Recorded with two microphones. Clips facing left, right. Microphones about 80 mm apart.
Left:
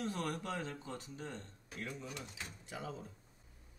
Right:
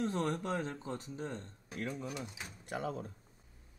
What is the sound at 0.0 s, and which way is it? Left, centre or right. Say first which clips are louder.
Speech: right 5 dB; right.